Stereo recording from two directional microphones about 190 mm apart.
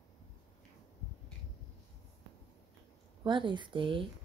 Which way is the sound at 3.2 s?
25° right (ahead or behind).